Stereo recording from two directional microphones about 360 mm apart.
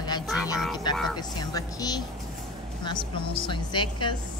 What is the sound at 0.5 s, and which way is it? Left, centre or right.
Music, centre.